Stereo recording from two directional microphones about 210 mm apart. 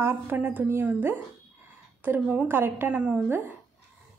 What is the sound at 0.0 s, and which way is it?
A woman's voice, 10° right (ahead or behind).